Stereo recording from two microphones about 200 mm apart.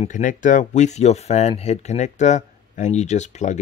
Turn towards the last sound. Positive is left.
turn(degrees=35)  # may be behind; listen again after turning